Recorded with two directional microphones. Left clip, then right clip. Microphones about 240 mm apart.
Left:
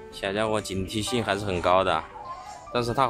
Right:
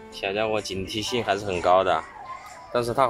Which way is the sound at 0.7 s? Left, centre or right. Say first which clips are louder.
Right 1 dB; left.